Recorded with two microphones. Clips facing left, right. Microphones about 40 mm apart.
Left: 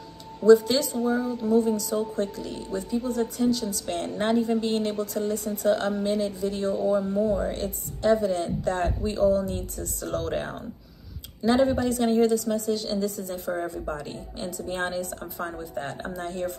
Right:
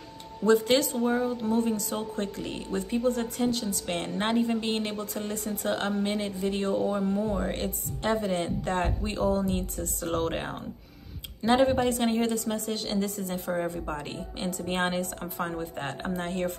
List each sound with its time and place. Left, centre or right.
0.5 s speech: right
0.9 s speech: right
3.8 s a woman's voice: right
5.3 s speech: right
5.7 s speech: right
7.0 s speech: right
11.4 s speech: right